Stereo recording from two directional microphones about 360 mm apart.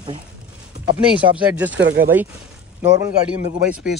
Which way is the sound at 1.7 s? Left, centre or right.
Right.